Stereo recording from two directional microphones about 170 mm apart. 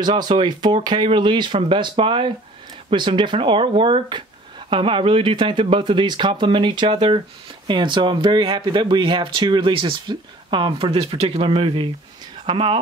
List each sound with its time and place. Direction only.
0.0 s speech: 25° right (ahead or behind)